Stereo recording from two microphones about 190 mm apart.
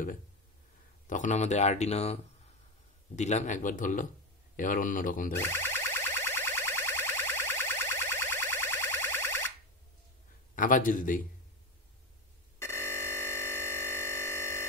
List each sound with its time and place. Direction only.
1.0 s speech: 40° left (ahead or behind)
3.2 s speech: 40° left (ahead or behind)
5.4 s music: 10° left (ahead or behind)
10.5 s speech: 45° left (ahead or behind)
12.5 s a sound: 15° left (ahead or behind)